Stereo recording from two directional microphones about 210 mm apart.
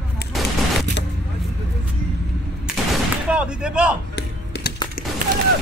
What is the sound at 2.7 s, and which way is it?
Fusillade, centre (ahead or behind).